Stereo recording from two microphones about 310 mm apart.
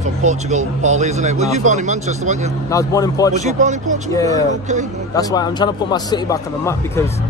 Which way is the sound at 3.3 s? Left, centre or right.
Right.